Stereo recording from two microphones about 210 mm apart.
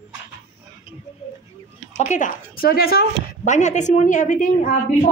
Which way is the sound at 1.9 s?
35° left (ahead or behind).